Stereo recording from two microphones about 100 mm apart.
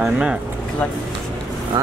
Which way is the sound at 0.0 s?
10° right (ahead or behind).